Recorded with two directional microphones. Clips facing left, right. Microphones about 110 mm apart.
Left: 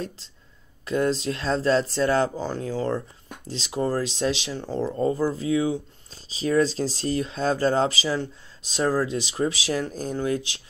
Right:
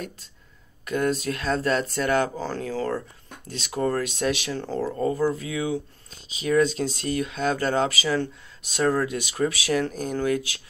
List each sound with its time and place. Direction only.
0.8 s speech: 30° left (ahead or behind)
2.3 s speech: 20° left (ahead or behind)
5.3 s speech: 30° left (ahead or behind)